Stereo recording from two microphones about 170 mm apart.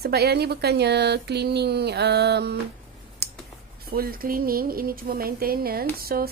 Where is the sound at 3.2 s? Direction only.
70° right (ahead or behind).